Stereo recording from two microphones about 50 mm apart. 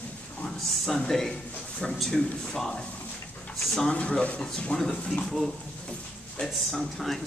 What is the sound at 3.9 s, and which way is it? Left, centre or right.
A man's voice, left.